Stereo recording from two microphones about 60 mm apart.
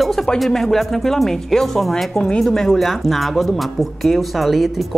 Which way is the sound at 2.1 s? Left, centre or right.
Centre.